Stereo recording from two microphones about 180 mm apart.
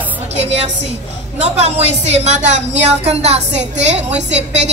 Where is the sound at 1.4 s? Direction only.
35° right (ahead or behind).